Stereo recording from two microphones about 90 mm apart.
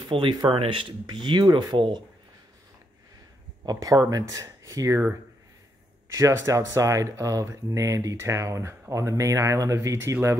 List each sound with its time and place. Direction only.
0.1 s speech: 70° right (ahead or behind)
3.6 s speech: 45° right (ahead or behind)
6.1 s speech: 35° right (ahead or behind)